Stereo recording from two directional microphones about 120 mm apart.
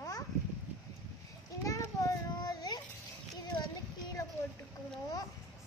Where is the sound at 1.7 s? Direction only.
25° left (ahead or behind).